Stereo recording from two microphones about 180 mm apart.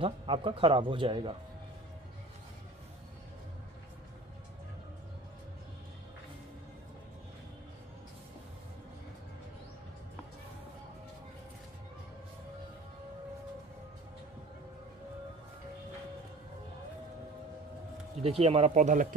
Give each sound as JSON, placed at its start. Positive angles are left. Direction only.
{"t": 0.0, "sound": "speech", "side_deg": -30}
{"t": 18.2, "sound": "speech", "side_deg": -35}